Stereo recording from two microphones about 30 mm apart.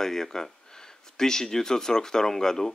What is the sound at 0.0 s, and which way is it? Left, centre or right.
Speech, centre.